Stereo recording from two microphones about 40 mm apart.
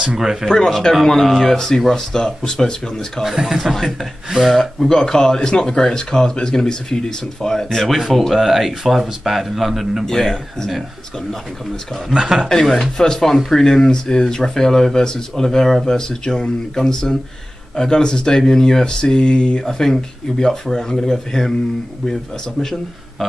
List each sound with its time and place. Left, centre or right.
0.2 s speech: centre
0.5 s speech: centre
3.3 s speech: centre
3.7 s speech: centre
4.3 s speech: centre
4.8 s speech: centre
7.6 s speech: centre
10.0 s speech: centre
12.1 s speech: right
12.9 s speech: centre
19.6 s speech: centre
22.6 s a man's voice: centre